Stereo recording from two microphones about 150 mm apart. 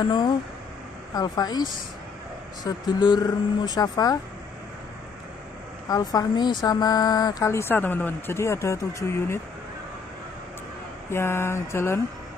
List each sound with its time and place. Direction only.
1.1 s speech: 25° left (ahead or behind)
5.9 s speech: 25° left (ahead or behind)
11.1 s speech: 15° left (ahead or behind)